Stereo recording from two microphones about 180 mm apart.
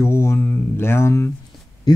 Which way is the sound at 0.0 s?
15° left (ahead or behind).